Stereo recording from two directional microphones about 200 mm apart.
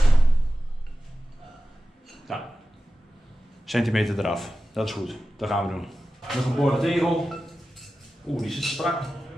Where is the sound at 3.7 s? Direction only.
Centre (ahead or behind).